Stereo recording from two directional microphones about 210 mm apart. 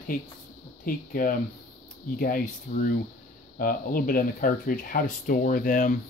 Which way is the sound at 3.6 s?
40° left (ahead or behind).